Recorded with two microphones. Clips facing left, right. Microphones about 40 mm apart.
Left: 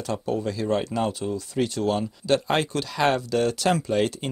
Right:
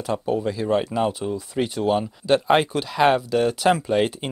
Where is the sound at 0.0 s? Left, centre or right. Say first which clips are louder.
Right 3 dB; centre.